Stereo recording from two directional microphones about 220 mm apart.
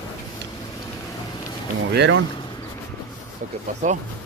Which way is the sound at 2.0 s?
55° right (ahead or behind).